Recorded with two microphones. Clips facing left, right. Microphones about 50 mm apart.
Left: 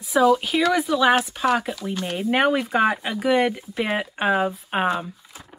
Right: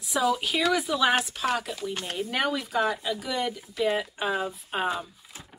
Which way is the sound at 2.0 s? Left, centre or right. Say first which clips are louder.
Left 9 dB; left.